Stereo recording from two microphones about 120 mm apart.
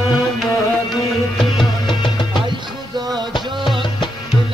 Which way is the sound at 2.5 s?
35° right (ahead or behind).